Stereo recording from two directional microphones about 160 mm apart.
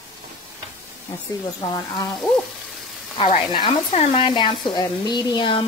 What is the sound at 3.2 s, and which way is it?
Speech, 30° left (ahead or behind).